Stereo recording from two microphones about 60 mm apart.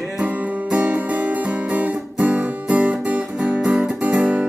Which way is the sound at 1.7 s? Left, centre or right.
Right.